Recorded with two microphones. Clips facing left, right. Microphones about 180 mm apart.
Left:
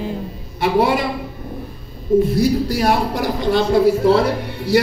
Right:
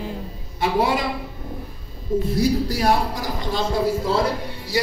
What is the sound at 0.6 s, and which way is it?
Speech, 65° left (ahead or behind).